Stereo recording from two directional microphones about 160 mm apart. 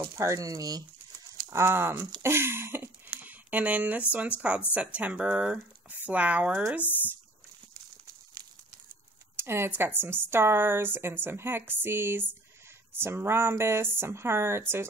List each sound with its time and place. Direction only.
0.2 s speech: 20° right (ahead or behind)
2.2 s a sound: 15° right (ahead or behind)
4.1 s speech: 10° right (ahead or behind)
6.8 s speech: 10° left (ahead or behind)
9.4 s speech: 15° right (ahead or behind)